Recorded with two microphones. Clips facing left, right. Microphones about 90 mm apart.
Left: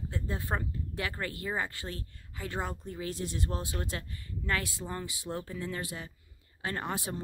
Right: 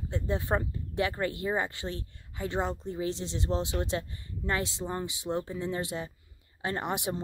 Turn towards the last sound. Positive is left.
turn(degrees=-20)  # may be behind; listen again after turning